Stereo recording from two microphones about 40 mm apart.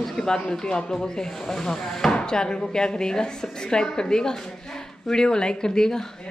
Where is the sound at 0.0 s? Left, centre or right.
Centre.